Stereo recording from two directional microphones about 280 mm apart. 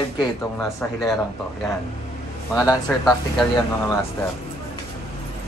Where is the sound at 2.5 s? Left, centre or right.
Centre.